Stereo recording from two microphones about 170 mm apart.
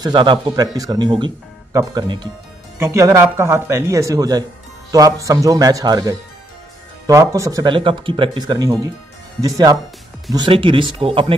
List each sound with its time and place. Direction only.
0.0 s speech: 25° right (ahead or behind)
2.8 s speech: 15° right (ahead or behind)
10.3 s speech: 30° right (ahead or behind)